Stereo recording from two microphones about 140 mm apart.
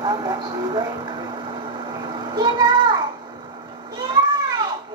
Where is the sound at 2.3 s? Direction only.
30° right (ahead or behind).